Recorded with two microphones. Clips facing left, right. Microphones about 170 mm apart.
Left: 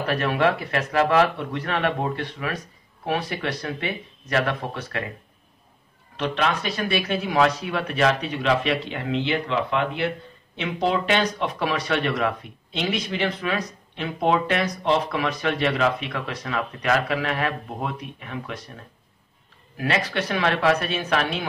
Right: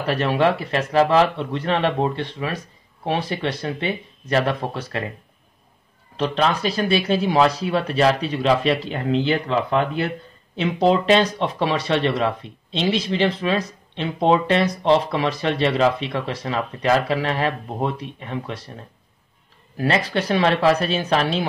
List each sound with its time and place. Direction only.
0.0 s speech: 30° right (ahead or behind)
6.1 s speech: 35° right (ahead or behind)
19.8 s speech: 30° right (ahead or behind)